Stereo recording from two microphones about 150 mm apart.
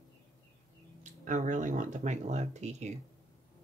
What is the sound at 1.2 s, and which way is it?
Speech, 55° right (ahead or behind).